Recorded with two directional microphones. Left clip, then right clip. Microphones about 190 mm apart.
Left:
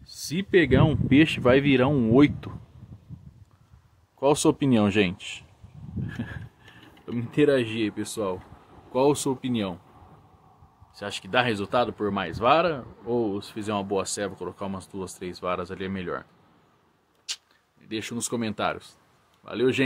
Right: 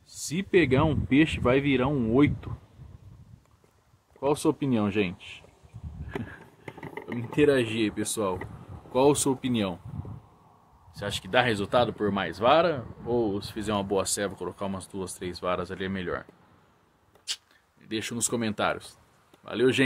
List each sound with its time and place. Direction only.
0.3 s speech: 10° left (ahead or behind)
4.2 s speech: 30° left (ahead or behind)
6.0 s a sound: 40° left (ahead or behind)
7.2 s speech: 20° left (ahead or behind)
7.5 s speech: 5° left (ahead or behind)
11.0 s speech: 5° left (ahead or behind)
17.3 s a sound: 5° left (ahead or behind)
17.8 s speech: centre (ahead or behind)